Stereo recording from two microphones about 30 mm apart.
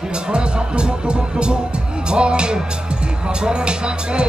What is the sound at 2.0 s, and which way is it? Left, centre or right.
Music, right.